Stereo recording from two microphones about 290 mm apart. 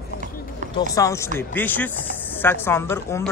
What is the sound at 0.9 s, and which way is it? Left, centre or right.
Speech, centre.